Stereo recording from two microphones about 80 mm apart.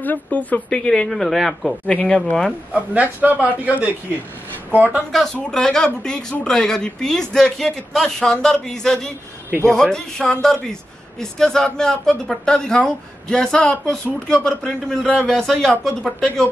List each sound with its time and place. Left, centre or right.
0.0 s speech: left
0.8 s a man's voice: centre
1.9 s speech: centre
2.7 s a man's voice: centre
5.1 s a man's voice: centre